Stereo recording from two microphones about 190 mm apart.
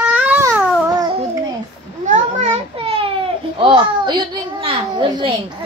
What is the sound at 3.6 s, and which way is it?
A child's voice, 25° right (ahead or behind).